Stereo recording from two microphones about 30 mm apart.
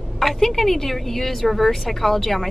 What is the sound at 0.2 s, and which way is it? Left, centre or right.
A woman's voice, centre.